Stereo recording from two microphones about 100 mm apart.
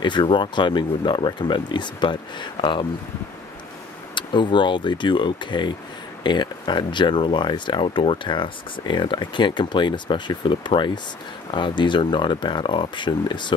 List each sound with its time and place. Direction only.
0.0 s speech: 50° left (ahead or behind)
4.1 s speech: 50° left (ahead or behind)